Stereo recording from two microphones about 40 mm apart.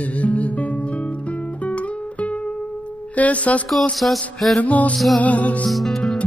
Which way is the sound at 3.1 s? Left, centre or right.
Left.